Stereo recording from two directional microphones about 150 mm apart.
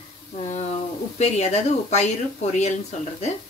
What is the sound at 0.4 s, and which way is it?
Speech, 45° left (ahead or behind).